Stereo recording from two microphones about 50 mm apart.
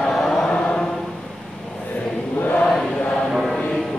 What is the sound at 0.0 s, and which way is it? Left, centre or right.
Chant, centre.